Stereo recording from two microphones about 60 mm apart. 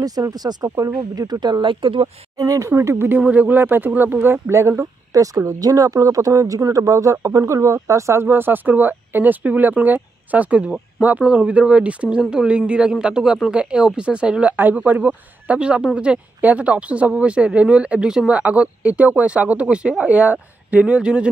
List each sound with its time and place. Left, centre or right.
0.0 s speech: right
2.3 s speech: right
2.8 s speech: right
3.2 s speech: right
4.5 s speech: right
5.1 s speech: right
8.3 s speech: right; by 14.5 s centre
14.6 s speech: right